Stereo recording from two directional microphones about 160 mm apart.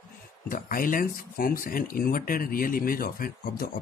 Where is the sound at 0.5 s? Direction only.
60° left (ahead or behind).